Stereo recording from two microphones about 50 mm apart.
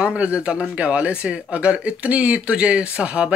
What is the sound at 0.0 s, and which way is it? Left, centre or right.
Speech, right.